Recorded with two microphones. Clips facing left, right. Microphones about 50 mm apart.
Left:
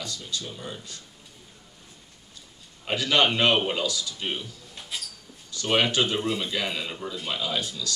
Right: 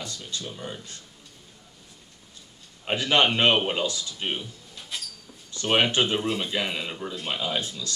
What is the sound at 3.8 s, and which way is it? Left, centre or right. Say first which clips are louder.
Speech: even; right.